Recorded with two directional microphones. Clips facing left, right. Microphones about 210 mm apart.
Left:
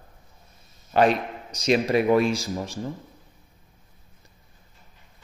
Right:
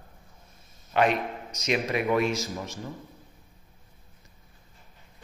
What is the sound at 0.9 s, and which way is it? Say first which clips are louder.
A man's voice: left 4 dB; 35° left (ahead or behind).